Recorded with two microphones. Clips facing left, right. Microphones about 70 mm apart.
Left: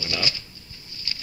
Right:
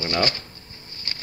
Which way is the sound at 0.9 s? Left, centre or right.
Right.